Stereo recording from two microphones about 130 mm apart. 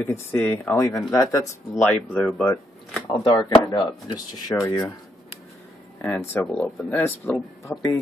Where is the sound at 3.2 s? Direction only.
30° left (ahead or behind).